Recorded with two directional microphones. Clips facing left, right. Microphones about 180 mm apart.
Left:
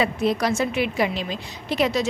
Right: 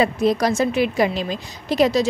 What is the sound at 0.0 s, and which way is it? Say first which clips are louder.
A woman's voice: right 4 dB; 40° right (ahead or behind).